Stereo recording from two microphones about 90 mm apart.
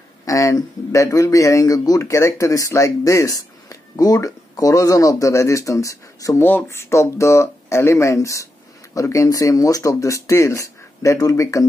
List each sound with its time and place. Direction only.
0.2 s speech: 35° left (ahead or behind)
6.4 s speech: 25° left (ahead or behind)